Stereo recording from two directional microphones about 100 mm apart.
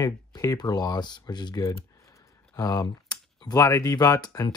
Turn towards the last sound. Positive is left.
turn(degrees=40)  # may be behind; listen again after turning